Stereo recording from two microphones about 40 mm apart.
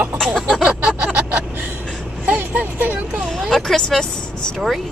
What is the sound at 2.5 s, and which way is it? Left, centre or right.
Vehicle, right.